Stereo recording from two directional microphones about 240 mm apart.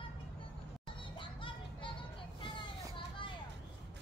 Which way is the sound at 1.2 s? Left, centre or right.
Left.